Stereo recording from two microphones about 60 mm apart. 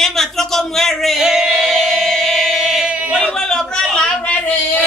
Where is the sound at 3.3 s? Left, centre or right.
Centre.